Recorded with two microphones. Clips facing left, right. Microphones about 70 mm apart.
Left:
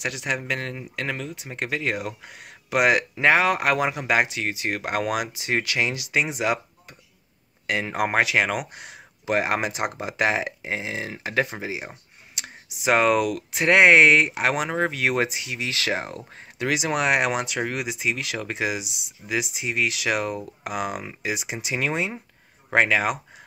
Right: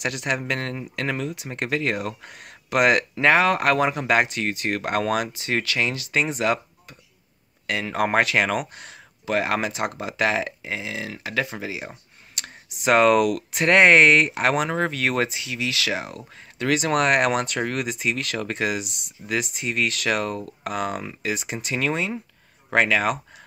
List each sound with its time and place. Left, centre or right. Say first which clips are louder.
0.0 s speech: right 2 dB; centre; by 11.9 s left
11.9 s a sound: right 1 dB; centre
12.7 s speech: right 3 dB; centre; by 16.6 s left
16.6 s speech: right 2 dB; centre